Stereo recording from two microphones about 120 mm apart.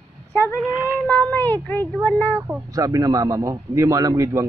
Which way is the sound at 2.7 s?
30° right (ahead or behind).